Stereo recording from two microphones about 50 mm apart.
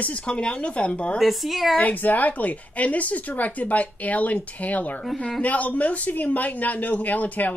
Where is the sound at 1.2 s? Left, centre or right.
Centre.